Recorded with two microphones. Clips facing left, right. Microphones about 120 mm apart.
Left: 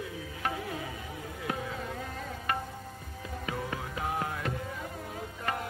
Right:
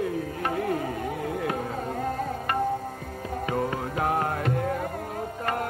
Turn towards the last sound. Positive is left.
turn(degrees=-55)  # may be behind; listen again after turning